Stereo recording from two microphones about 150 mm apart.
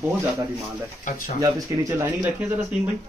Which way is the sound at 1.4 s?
15° right (ahead or behind).